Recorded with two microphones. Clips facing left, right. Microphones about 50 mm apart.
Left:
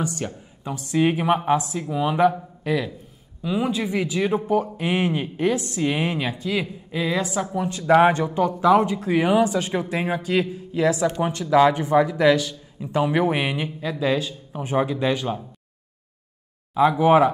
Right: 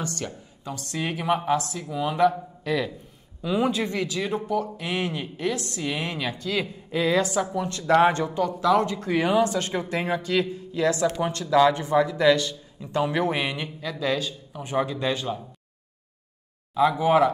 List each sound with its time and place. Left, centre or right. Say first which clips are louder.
0.0 s speech: left 4 dB; centre
2.6 s speech: left 2 dB; centre
4.0 s speech: left 5 dB; left
16.7 s speech: left 4 dB; left